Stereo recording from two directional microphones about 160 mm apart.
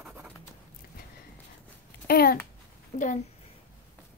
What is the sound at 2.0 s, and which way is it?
Babbling, 70° left (ahead or behind).